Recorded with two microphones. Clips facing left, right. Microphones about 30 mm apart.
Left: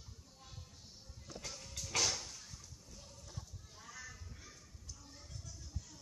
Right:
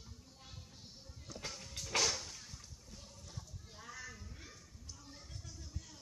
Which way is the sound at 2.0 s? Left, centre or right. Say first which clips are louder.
Left 1 dB; centre.